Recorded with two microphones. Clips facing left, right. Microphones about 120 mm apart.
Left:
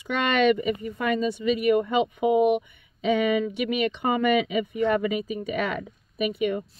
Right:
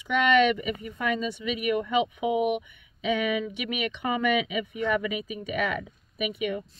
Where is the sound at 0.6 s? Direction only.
35° left (ahead or behind).